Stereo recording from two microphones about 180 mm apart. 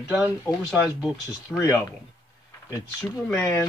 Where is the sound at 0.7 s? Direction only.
Centre (ahead or behind).